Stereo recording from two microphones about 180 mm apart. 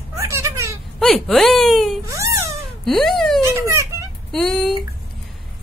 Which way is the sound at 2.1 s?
15° right (ahead or behind).